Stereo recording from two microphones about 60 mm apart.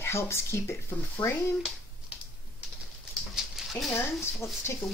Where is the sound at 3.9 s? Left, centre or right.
Left.